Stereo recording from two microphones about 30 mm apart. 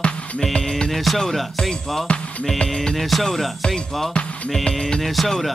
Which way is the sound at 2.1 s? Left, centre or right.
Left.